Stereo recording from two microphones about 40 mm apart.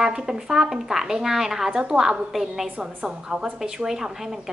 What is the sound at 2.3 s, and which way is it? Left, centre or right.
A woman's voice, centre.